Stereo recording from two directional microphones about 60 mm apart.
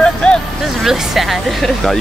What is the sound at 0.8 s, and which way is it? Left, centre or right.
Speech, centre.